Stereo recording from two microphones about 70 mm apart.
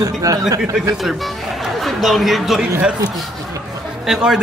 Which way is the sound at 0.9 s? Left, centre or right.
Centre.